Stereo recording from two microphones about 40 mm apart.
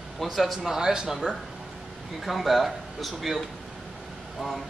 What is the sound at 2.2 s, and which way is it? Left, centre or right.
A man's voice, centre.